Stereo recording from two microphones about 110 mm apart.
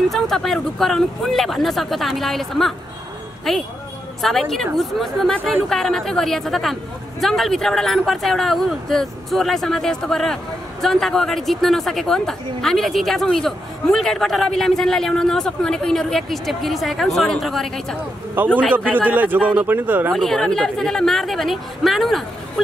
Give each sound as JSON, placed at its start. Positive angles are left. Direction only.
{"t": 0.1, "sound": "a man's voice", "side_deg": 5}
{"t": 19.0, "sound": "speech", "side_deg": -15}
{"t": 20.1, "sound": "speech", "side_deg": 0}